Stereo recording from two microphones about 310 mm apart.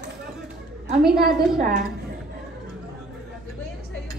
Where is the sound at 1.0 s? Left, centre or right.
Centre.